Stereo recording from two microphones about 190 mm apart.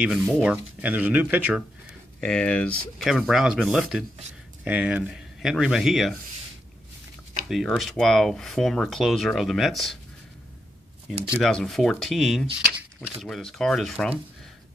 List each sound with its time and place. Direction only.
0.0 s speech: 5° right (ahead or behind)
2.1 s speech: 5° left (ahead or behind)
7.4 s speech: centre (ahead or behind)
11.2 s speech: 5° left (ahead or behind)